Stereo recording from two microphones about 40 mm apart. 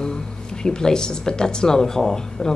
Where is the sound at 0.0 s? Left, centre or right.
Centre.